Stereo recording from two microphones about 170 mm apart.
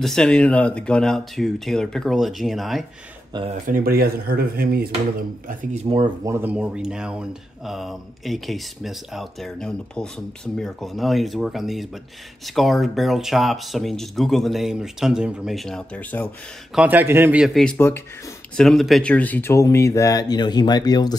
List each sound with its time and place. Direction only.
0.0 s speech: 5° left (ahead or behind)
3.6 s speech: 60° right (ahead or behind)
6.2 s speech: 15° right (ahead or behind); by 16.3 s 10° left (ahead or behind)
16.7 s a man's voice: 10° right (ahead or behind)
17.7 s speech: 15° left (ahead or behind)
18.6 s speech: centre (ahead or behind); by 21.2 s 25° left (ahead or behind)